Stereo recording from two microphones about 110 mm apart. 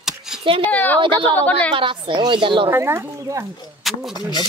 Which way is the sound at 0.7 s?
15° left (ahead or behind).